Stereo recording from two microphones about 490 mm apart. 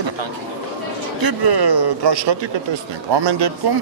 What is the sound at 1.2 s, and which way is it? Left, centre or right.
Speech, right.